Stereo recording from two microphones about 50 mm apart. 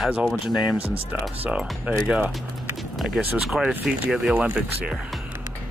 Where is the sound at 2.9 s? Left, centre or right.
Centre.